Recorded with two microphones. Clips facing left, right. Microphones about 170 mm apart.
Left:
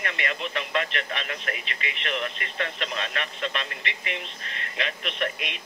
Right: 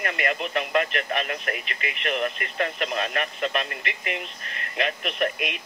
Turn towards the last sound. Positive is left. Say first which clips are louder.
# right 4 dB
turn(degrees=-50)  # may be behind; listen again after turning